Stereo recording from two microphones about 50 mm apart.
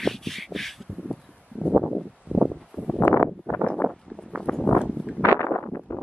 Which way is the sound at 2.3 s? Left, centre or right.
Right.